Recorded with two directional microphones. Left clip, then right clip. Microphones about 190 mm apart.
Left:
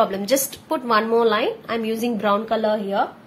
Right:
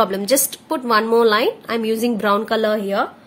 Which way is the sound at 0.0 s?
15° right (ahead or behind).